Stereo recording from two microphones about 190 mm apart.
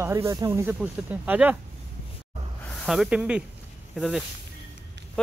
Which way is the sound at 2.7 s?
Centre (ahead or behind).